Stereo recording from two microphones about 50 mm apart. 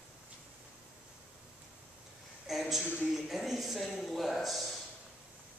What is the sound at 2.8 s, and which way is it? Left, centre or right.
Speech, left.